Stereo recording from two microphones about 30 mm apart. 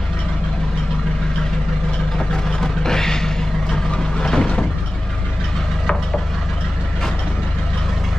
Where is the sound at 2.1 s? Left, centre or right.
Centre.